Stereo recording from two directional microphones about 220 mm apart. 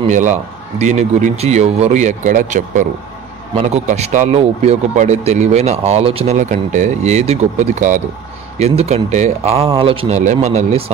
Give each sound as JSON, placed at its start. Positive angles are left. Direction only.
{"t": 0.1, "sound": "speech", "side_deg": -35}